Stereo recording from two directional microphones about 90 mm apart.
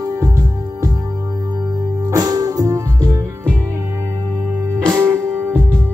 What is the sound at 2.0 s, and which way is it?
Music, 45° right (ahead or behind).